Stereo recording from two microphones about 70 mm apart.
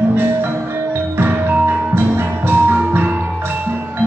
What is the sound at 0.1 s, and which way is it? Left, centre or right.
Music, right.